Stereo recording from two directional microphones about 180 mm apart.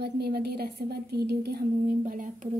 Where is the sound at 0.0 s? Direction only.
60° right (ahead or behind).